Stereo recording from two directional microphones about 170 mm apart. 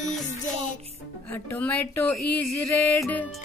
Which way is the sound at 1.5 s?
10° left (ahead or behind).